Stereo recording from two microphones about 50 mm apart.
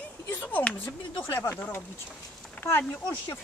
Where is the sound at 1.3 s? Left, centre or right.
Left.